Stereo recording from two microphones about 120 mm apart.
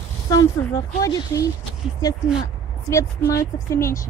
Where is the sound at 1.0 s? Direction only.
25° left (ahead or behind).